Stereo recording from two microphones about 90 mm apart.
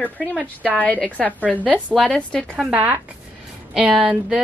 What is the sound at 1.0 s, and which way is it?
Speech, 15° left (ahead or behind).